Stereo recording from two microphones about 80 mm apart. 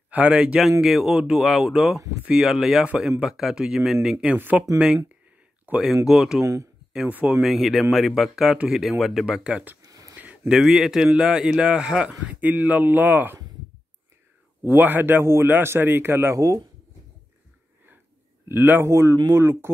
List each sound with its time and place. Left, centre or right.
0.1 s speech: centre
0.6 s speech: centre
4.4 s a man's voice: right
4.7 s a man's voice: centre
6.0 s speech: centre
6.4 s speech: right
7.1 s a man's voice: right
7.4 s speech: centre
10.1 s a sound: right
10.5 s a man's voice: centre; by 13.4 s right
14.6 s a man's voice: right
16.3 s speech: right
18.5 s a man's voice: right